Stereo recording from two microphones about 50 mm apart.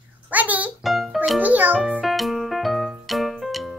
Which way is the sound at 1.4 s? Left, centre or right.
Right.